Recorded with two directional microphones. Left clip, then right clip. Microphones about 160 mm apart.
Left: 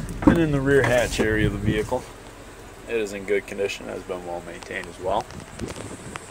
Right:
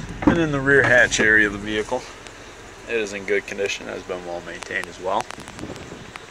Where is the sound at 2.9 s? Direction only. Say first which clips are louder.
Right 2 dB; 5° left (ahead or behind).